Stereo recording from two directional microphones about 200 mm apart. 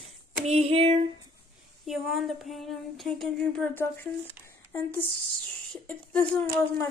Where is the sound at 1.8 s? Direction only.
Centre (ahead or behind).